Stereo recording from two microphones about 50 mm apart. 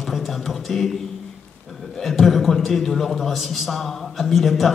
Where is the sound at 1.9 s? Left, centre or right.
Centre.